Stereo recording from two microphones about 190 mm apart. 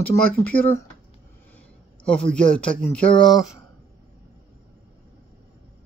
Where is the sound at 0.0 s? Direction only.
10° left (ahead or behind).